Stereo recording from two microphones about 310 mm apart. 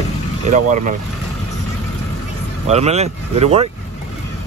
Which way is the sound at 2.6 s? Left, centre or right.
Right.